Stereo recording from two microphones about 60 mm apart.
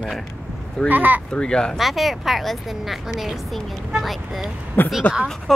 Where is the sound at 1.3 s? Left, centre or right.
Centre.